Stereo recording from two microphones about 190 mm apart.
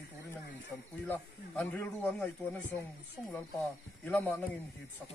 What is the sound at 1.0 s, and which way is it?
Speech, 10° left (ahead or behind).